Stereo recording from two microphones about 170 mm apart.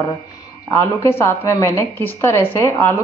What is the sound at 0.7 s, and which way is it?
A woman's voice, 15° left (ahead or behind).